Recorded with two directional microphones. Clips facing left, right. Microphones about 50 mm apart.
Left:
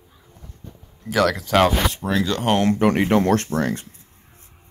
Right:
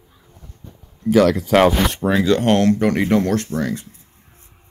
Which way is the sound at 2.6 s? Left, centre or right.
Left.